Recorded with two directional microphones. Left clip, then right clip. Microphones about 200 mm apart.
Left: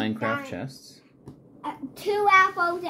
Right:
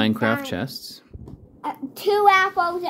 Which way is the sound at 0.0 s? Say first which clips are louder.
Right 6 dB; 35° right (ahead or behind).